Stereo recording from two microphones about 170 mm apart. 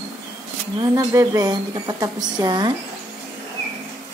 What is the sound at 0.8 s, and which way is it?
A woman's voice, 20° right (ahead or behind).